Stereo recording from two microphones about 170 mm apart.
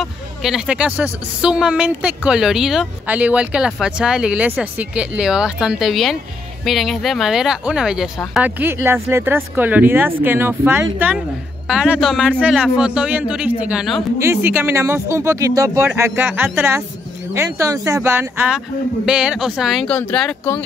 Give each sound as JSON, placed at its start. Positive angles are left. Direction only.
{"t": 0.0, "sound": "speech", "side_deg": 0}
{"t": 14.2, "sound": "speech", "side_deg": -15}